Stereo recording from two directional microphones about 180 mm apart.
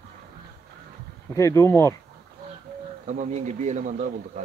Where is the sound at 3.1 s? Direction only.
40° right (ahead or behind).